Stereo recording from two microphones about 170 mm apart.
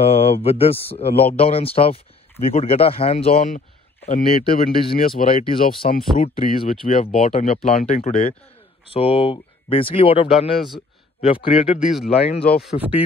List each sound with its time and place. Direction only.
0.0 s speech: 35° left (ahead or behind)
6.9 s a man's voice: 45° left (ahead or behind)
11.8 s speech: centre (ahead or behind)
12.1 s speech: 35° left (ahead or behind)
12.7 s speech: 45° left (ahead or behind)